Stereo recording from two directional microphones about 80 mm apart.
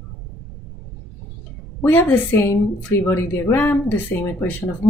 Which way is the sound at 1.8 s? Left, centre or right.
Left.